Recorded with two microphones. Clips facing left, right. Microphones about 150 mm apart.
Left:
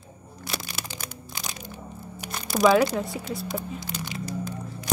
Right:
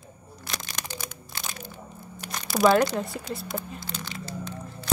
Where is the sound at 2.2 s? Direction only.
Centre (ahead or behind).